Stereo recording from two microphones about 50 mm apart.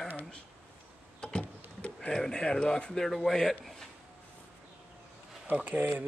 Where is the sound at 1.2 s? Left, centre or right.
Centre.